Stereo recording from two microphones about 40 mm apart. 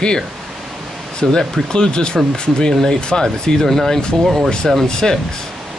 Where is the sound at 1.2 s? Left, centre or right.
Centre.